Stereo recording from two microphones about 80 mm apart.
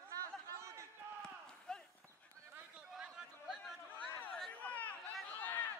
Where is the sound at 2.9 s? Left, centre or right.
Centre.